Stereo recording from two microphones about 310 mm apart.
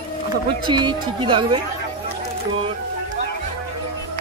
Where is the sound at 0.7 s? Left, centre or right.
Centre.